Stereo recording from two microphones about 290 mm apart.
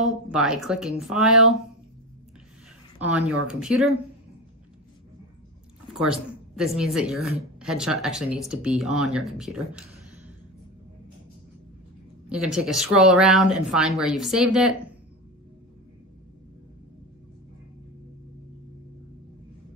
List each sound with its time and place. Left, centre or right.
0.0 s speech: centre
3.0 s speech: centre
6.5 s speech: centre
12.3 s speech: centre